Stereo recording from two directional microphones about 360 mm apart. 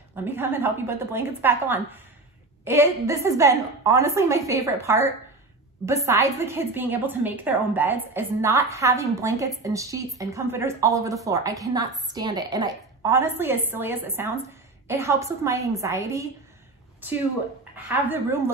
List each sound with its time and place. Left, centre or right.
0.1 s a woman's voice: centre
17.7 s a woman's voice: centre